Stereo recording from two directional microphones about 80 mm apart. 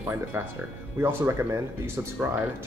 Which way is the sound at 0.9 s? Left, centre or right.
Right.